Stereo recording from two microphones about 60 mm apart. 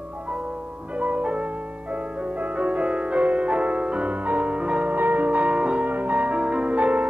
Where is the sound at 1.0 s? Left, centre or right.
Right.